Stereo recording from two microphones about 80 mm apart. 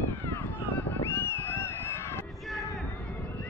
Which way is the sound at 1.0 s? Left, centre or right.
Left.